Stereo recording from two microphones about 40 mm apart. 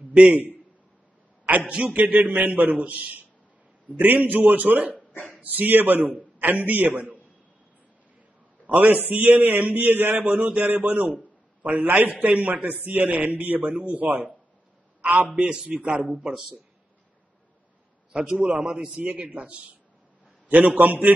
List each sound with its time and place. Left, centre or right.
1.7 s a man's voice: right
8.6 s a man's voice: right
15.0 s a sound: right
15.3 s a man's voice: right
15.8 s a man's voice: right
16.3 s a man's voice: right
18.2 s a man's voice: right
18.8 s a man's voice: right
19.1 s a man's voice: right
20.7 s a man's voice: right